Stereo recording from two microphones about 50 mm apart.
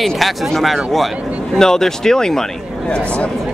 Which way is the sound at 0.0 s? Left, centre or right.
Centre.